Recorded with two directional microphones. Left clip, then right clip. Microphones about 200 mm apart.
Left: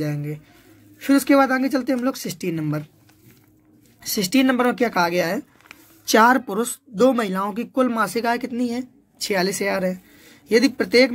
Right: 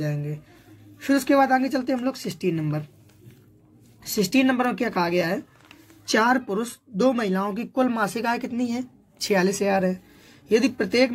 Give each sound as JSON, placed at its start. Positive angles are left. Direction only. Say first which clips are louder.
{"t": 0.9, "sound": "speech", "louder": "left 3 dB", "side_deg": 35}
{"t": 4.0, "sound": "speech", "louder": "left 2 dB", "side_deg": 30}